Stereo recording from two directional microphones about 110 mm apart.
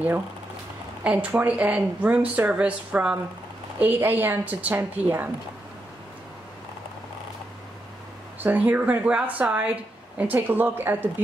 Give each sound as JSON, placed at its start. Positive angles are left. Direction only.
{"t": 1.0, "sound": "a woman's voice", "side_deg": -10}
{"t": 8.4, "sound": "a woman's voice", "side_deg": -15}